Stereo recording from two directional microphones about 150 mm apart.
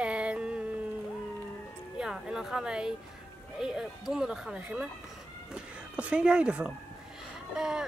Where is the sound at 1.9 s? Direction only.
5° right (ahead or behind).